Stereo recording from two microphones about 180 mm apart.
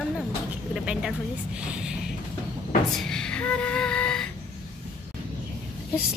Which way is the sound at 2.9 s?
5° left (ahead or behind).